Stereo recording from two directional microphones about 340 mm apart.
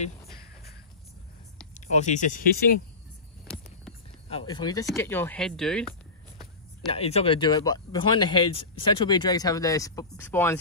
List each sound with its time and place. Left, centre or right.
1.7 s speech: left
4.3 s speech: centre
4.8 s a sound: centre
6.9 s speech: centre